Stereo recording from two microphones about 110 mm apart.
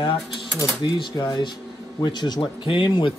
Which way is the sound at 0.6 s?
40° left (ahead or behind).